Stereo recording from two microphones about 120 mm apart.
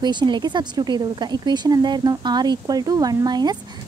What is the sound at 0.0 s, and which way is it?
Speech, 40° right (ahead or behind).